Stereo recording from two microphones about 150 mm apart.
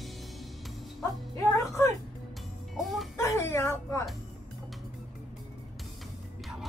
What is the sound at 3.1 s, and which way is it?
Music, 20° left (ahead or behind).